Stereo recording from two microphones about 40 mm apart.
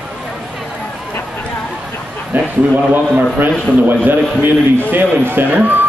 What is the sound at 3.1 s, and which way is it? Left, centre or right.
Speech, right.